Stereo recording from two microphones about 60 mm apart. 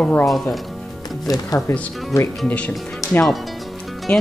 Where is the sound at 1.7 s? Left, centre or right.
Left.